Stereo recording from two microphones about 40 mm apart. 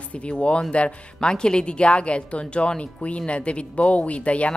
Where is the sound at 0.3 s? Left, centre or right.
Left.